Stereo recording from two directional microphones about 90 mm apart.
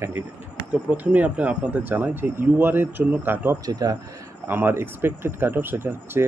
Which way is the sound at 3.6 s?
45° right (ahead or behind).